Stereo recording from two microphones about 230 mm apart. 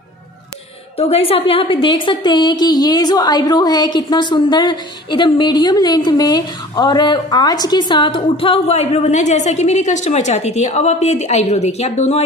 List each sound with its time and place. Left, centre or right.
0.9 s a woman's voice: left